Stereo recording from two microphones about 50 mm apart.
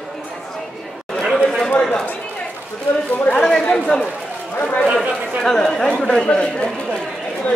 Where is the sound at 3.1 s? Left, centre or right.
Left.